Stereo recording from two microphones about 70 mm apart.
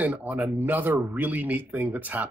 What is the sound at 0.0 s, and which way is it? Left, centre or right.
Speech, right.